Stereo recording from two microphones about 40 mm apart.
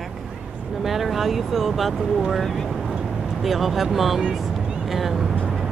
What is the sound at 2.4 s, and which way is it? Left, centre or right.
Speech, centre.